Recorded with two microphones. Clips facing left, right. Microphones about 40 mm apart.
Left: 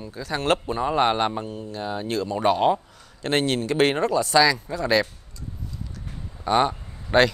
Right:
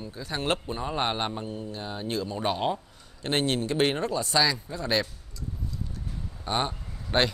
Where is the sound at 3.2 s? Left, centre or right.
Left.